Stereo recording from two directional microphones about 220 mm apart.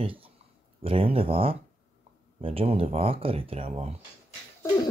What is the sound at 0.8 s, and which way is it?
Speech, 25° right (ahead or behind).